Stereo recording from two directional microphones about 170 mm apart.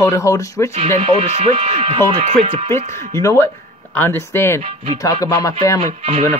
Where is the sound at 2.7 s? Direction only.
20° left (ahead or behind).